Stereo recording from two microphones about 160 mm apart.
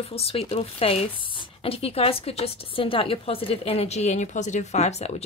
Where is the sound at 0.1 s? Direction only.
40° left (ahead or behind).